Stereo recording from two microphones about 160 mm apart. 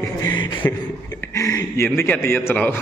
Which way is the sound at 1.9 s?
15° left (ahead or behind).